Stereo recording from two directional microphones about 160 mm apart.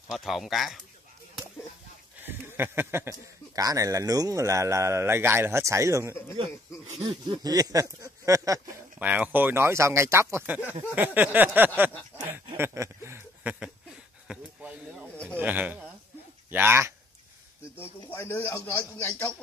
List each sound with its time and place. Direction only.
0.1 s speech: centre (ahead or behind)
2.2 s speech: 15° right (ahead or behind)
9.0 s speech: 10° right (ahead or behind)
12.5 s a sound: 15° right (ahead or behind)
15.3 s speech: 10° right (ahead or behind)
18.0 s a man's voice: 15° left (ahead or behind)